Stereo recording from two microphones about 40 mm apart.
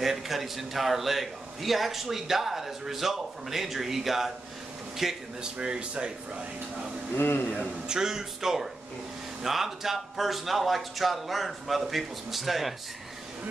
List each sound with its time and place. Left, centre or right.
0.0 s a man's voice: centre
5.4 s speech: right
7.2 s a man's voice: left
7.9 s a man's voice: centre